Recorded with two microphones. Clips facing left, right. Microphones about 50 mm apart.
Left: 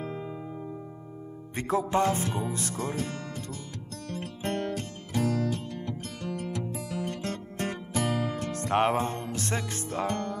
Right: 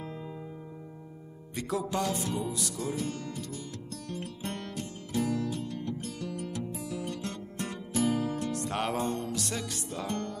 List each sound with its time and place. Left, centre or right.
1.5 s music: left
5.2 s music: left
8.5 s music: left